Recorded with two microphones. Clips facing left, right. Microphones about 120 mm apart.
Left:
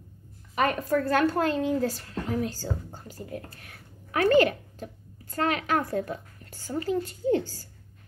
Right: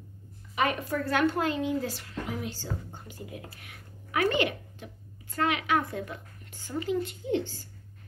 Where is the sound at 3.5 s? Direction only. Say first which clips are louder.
Even; 40° left (ahead or behind).